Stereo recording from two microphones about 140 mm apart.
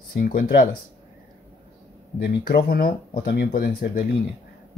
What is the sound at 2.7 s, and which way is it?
Speech, 90° left.